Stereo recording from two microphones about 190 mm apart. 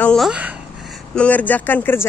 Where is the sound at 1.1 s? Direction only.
5° left (ahead or behind).